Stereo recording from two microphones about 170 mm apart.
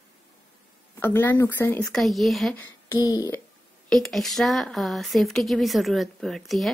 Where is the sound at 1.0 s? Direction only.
10° left (ahead or behind).